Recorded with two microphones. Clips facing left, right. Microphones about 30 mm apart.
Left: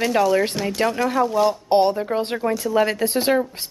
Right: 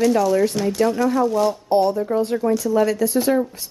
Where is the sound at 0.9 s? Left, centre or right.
Left.